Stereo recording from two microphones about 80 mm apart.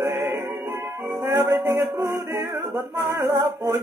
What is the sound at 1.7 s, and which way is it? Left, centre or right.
Music, right.